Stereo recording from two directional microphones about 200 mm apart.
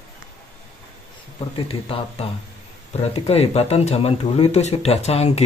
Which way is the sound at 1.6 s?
30° left (ahead or behind).